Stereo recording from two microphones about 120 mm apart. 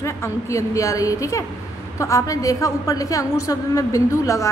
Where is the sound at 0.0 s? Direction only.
25° left (ahead or behind).